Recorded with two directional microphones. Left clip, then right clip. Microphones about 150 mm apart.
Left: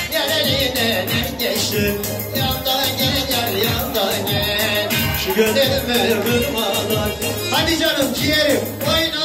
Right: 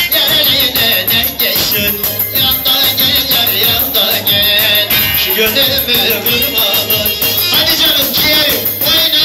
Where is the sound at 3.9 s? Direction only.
40° left (ahead or behind).